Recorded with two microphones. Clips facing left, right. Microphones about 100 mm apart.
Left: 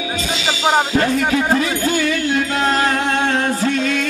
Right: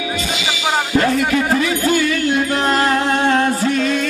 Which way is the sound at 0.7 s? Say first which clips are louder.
Left 1 dB; 20° left (ahead or behind).